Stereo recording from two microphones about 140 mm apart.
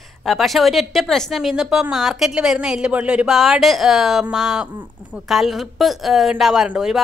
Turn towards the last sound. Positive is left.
turn(degrees=-5)  # may be behind; listen again after turning